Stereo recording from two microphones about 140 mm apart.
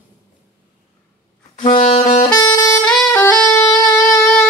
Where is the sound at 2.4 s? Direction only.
25° left (ahead or behind).